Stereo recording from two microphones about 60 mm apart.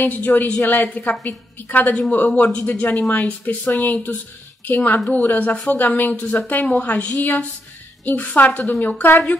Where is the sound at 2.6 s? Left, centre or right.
Left.